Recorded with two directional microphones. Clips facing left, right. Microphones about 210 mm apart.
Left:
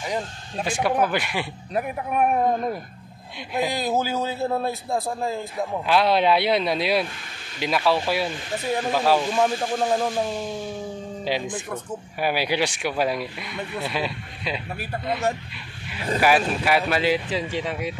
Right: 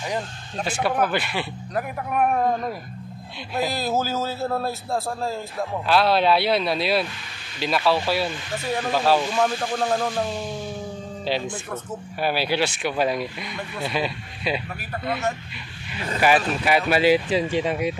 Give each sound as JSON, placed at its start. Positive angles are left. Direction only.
{"t": 0.0, "sound": "a man's voice", "side_deg": 10}
{"t": 3.5, "sound": "a man's voice", "side_deg": 15}
{"t": 11.2, "sound": "a man's voice", "side_deg": 15}
{"t": 16.2, "sound": "speech", "side_deg": 5}